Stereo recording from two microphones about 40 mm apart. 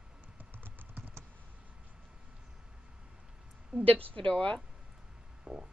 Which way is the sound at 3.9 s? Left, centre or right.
Left.